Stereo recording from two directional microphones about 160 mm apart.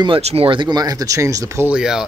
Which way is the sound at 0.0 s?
35° right (ahead or behind).